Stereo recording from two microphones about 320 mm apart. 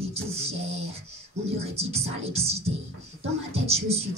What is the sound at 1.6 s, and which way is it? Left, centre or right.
Speech, centre.